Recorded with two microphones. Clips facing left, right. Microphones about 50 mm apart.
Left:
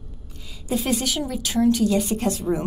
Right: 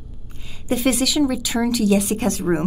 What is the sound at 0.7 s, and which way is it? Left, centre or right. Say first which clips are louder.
A woman's voice: right 4 dB; right.